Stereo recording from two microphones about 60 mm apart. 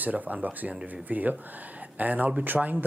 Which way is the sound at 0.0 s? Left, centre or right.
Right.